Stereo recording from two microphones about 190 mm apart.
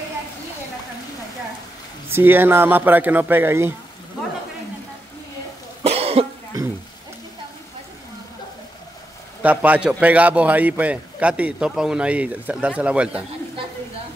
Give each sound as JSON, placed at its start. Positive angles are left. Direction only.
{"t": 2.0, "sound": "a man's voice", "side_deg": -10}
{"t": 5.9, "sound": "cough", "side_deg": -30}
{"t": 9.4, "sound": "a man's voice", "side_deg": -10}